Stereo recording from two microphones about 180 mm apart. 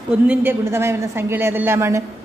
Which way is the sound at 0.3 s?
10° right (ahead or behind).